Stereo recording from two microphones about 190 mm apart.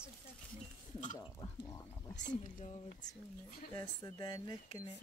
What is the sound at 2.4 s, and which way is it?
Speech, 40° left (ahead or behind).